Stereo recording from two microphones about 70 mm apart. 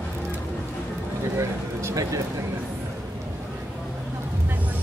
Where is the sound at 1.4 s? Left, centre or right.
Right.